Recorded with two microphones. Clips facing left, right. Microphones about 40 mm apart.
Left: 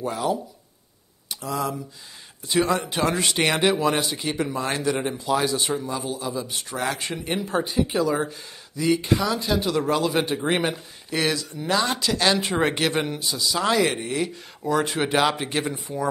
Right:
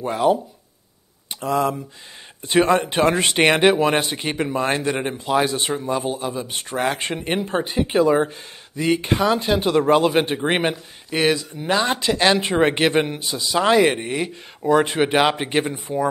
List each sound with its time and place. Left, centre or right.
0.0 s speech: right